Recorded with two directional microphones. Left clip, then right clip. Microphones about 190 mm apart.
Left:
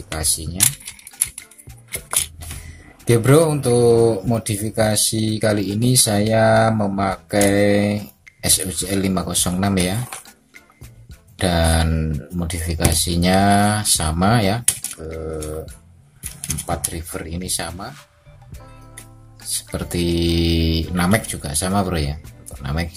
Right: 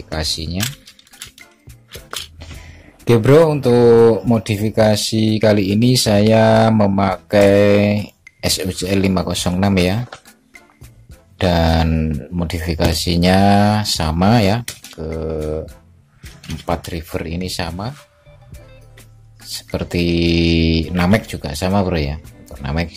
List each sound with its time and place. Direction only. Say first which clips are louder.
0.1 s speech: right 4 dB; 15° right (ahead or behind)
3.1 s speech: right 4 dB; 20° right (ahead or behind)
11.3 s speech: right 3 dB; 25° right (ahead or behind)
14.6 s speech: left 5 dB; 5° left (ahead or behind)
16.6 s speech: right 5 dB; 25° right (ahead or behind)
17.7 s speech: right 4 dB; centre (ahead or behind)
19.5 s speech: right 4 dB; 20° right (ahead or behind)